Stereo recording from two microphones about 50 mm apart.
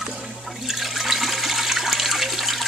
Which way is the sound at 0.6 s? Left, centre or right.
Centre.